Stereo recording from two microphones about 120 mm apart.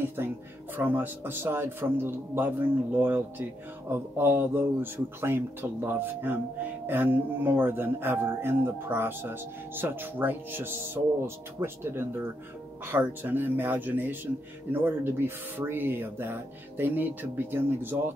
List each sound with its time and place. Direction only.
0.2 s speech: 20° right (ahead or behind)